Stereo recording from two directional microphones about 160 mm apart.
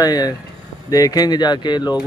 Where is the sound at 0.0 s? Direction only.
25° left (ahead or behind).